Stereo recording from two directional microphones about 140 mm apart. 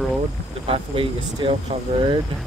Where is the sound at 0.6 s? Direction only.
40° right (ahead or behind).